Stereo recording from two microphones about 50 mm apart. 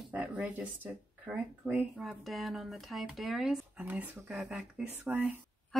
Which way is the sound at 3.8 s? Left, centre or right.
Right.